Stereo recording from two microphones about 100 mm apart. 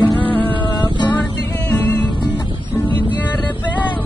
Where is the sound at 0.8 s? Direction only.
50° left (ahead or behind).